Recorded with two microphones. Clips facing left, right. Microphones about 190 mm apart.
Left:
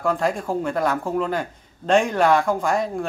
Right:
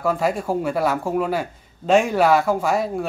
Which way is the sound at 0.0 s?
5° right (ahead or behind).